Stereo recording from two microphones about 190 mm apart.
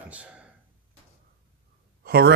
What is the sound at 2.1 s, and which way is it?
Speech, 55° right (ahead or behind).